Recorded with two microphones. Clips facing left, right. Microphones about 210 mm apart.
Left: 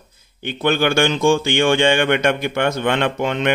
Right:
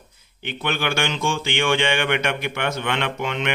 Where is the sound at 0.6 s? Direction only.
45° left (ahead or behind).